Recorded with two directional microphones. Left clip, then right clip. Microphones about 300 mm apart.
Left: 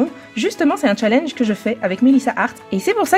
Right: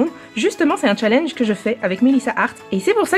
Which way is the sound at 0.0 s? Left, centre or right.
Centre.